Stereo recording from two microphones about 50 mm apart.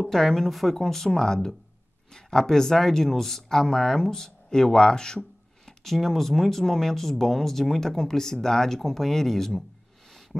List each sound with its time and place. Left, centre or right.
0.0 s speech: centre